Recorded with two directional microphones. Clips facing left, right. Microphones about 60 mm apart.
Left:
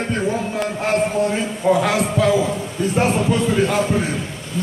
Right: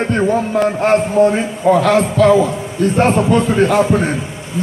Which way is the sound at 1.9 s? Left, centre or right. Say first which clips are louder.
Right 6 dB; right.